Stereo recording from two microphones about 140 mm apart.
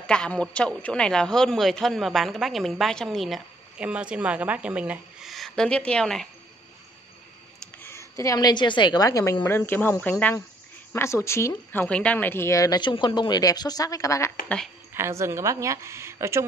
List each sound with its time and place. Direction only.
0.0 s a woman's voice: 5° left (ahead or behind)
7.8 s speech: 20° left (ahead or behind)
15.0 s speech: 20° right (ahead or behind)